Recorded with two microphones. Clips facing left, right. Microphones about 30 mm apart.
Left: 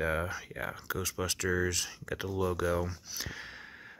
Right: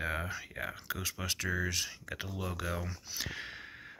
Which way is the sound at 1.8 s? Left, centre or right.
Centre.